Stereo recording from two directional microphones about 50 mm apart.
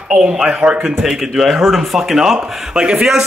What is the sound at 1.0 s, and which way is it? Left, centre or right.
A man's voice, centre.